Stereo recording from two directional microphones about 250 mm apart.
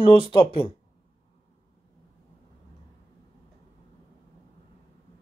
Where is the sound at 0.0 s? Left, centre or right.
Left.